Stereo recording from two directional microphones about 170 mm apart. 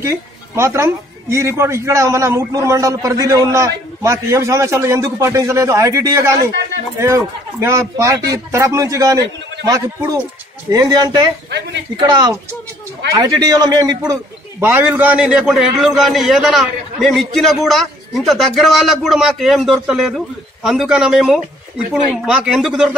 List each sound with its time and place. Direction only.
0.0 s a woman's voice: 15° right (ahead or behind)